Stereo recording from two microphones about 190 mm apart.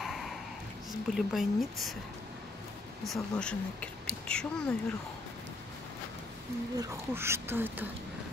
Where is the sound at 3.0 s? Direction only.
Centre (ahead or behind).